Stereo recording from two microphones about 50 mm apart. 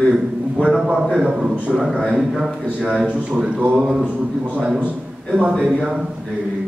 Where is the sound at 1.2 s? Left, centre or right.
Centre.